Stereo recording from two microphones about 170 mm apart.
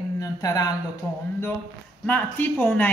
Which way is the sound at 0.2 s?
20° left (ahead or behind).